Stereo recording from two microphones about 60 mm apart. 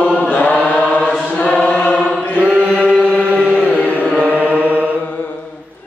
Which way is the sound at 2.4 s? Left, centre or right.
Right.